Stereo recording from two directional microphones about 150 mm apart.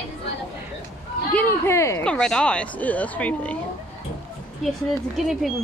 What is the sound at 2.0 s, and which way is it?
Speech, 5° left (ahead or behind).